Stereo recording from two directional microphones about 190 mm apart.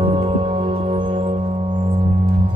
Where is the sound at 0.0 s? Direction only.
25° right (ahead or behind).